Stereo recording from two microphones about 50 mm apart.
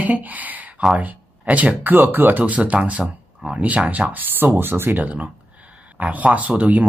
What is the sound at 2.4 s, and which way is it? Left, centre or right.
Speech, right.